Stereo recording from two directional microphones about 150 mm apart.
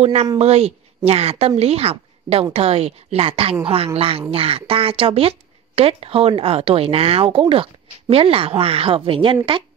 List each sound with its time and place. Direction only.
0.0 s a woman's voice: 45° right (ahead or behind)